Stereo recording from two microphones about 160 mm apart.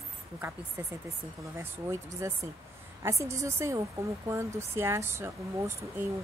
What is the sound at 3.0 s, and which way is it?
Speech, 20° right (ahead or behind).